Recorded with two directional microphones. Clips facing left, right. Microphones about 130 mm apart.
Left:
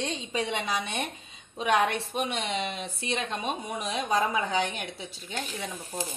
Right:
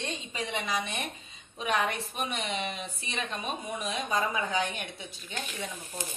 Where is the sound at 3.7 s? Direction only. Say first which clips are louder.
Left 3 dB; 75° left (ahead or behind).